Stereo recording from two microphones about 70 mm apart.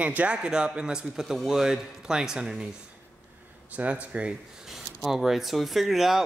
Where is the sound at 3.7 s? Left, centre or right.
Centre.